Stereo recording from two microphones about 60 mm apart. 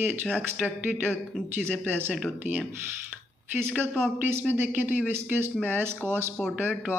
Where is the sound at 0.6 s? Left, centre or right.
Right.